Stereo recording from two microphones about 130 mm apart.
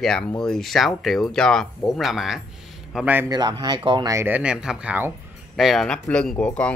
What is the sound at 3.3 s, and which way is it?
Speech, 30° right (ahead or behind).